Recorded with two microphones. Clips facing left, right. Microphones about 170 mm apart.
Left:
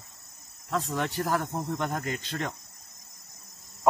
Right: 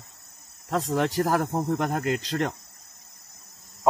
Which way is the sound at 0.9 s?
40° right (ahead or behind).